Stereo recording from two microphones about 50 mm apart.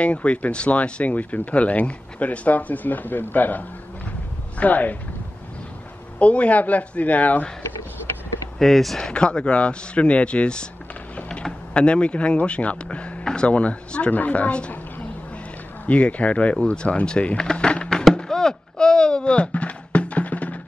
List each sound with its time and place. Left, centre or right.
0.0 s speech: left
6.1 s speech: left
8.5 s speech: centre
9.1 s speech: left
11.7 s speech: left
15.9 s speech: left
17.4 s a sound: centre